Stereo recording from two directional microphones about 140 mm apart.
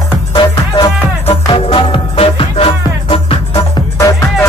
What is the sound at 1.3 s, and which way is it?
Music, 40° left (ahead or behind).